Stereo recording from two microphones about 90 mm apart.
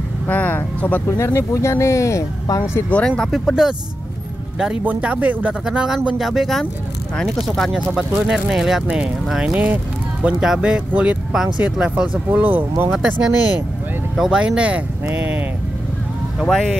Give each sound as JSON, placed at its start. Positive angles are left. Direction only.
{"t": 0.3, "sound": "speech", "side_deg": 20}
{"t": 1.0, "sound": "speech", "side_deg": 30}
{"t": 2.9, "sound": "speech", "side_deg": 10}
{"t": 3.3, "sound": "speech", "side_deg": 0}
{"t": 4.8, "sound": "speech", "side_deg": -15}
{"t": 12.9, "sound": "speech", "side_deg": -5}
{"t": 16.3, "sound": "speech", "side_deg": 5}